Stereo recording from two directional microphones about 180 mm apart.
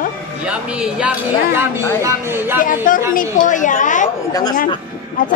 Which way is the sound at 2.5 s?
50° left (ahead or behind).